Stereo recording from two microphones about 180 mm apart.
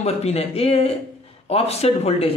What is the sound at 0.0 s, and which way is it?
A man's voice, 35° left (ahead or behind).